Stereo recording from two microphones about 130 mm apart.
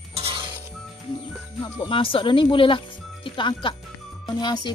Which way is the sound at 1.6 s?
40° left (ahead or behind).